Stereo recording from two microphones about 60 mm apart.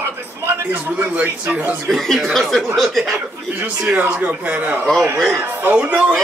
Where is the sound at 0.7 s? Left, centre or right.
Right.